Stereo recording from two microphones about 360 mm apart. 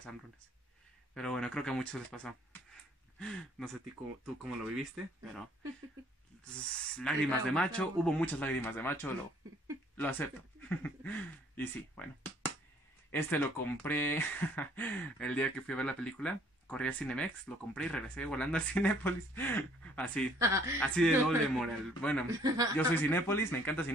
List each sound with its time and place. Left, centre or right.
1.1 s speech: centre
4.9 s speech: centre
20.3 s speech: centre
20.8 s speech: centre
22.3 s speech: centre
22.8 s speech: centre